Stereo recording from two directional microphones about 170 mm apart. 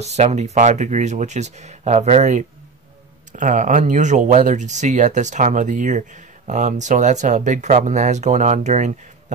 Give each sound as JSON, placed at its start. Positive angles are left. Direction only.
{"t": 0.0, "sound": "speech", "side_deg": -40}